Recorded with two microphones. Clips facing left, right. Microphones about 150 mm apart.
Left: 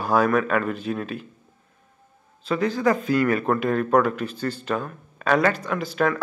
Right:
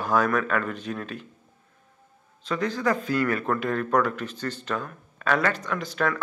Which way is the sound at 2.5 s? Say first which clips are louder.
Left 4 dB; 10° left (ahead or behind).